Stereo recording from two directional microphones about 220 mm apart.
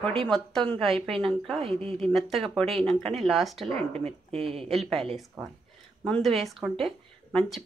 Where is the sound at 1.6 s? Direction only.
25° right (ahead or behind).